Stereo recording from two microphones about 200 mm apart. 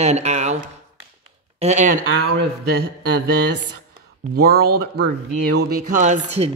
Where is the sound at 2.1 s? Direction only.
75° right (ahead or behind).